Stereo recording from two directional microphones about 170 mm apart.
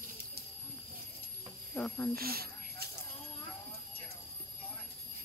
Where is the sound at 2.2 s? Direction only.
65° right (ahead or behind).